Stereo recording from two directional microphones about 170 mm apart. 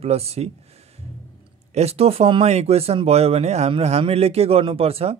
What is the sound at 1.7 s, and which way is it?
Speech, 35° right (ahead or behind).